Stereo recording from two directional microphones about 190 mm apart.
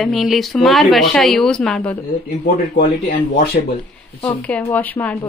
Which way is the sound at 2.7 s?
50° left (ahead or behind).